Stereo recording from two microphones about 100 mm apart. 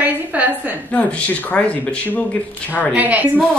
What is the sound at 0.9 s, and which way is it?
Speech, 15° left (ahead or behind).